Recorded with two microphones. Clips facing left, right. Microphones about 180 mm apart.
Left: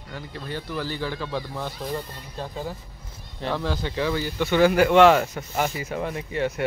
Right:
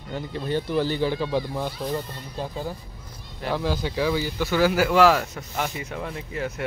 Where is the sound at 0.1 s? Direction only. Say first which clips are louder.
Right 7 dB; 25° right (ahead or behind).